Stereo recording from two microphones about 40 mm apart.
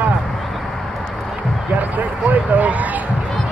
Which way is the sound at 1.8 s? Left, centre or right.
Right.